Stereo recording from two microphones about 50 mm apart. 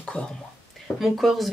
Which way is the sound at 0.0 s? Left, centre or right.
Centre.